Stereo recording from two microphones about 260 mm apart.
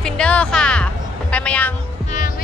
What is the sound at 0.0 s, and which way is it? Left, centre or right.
Music, centre.